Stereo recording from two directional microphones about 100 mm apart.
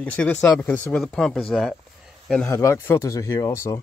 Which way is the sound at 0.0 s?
10° left (ahead or behind).